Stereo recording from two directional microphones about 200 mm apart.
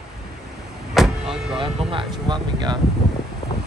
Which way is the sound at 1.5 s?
25° right (ahead or behind).